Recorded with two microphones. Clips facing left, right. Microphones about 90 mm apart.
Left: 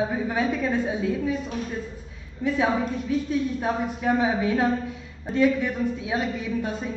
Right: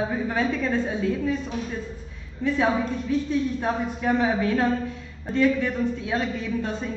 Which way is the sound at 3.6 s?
10° left (ahead or behind).